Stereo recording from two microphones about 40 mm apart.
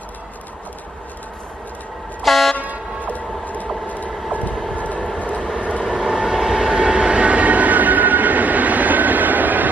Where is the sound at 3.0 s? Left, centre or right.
Left.